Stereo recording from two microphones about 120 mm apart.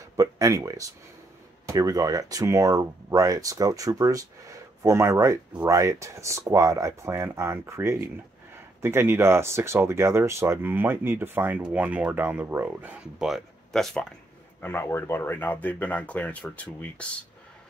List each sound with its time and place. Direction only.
0.1 s speech: 25° right (ahead or behind); by 14.0 s 5° left (ahead or behind)
14.6 s speech: 20° left (ahead or behind)